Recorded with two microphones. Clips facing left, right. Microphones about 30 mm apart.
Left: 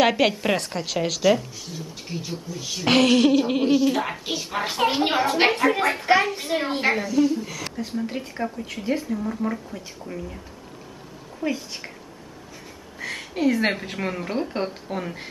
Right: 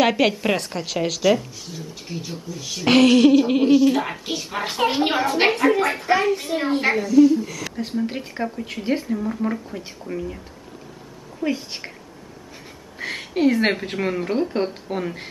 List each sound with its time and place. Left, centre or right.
0.0 s a woman's voice: centre
6.2 s a woman's voice: centre
7.7 s a woman's voice: centre
8.8 s speech: right
9.1 s a woman's voice: centre
11.5 s speech: right
13.0 s a woman's voice: centre